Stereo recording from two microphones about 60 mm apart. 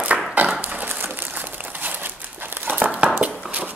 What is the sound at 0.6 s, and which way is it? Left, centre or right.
Crumpling, right.